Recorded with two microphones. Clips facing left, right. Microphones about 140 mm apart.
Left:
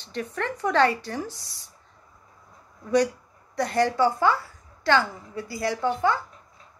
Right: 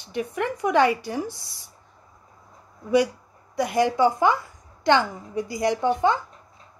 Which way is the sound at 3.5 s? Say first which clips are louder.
Right 1 dB; 10° right (ahead or behind).